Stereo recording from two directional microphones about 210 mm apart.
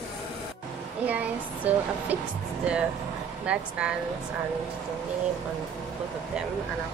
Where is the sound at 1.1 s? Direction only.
5° right (ahead or behind).